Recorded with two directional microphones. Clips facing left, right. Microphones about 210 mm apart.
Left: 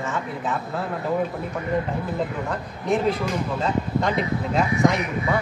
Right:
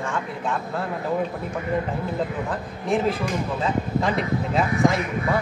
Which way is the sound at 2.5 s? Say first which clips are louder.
Even; centre (ahead or behind).